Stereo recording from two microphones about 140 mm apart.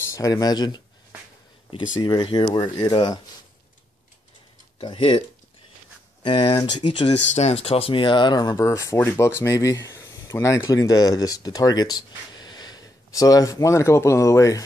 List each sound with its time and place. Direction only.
0.1 s speech: 25° left (ahead or behind)
4.7 s speech: 40° left (ahead or behind)
6.2 s speech: 35° left (ahead or behind)
7.3 s speech: 50° left (ahead or behind); by 14.6 s 20° left (ahead or behind)